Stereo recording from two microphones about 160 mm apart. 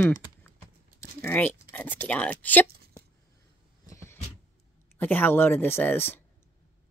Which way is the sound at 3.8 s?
15° left (ahead or behind).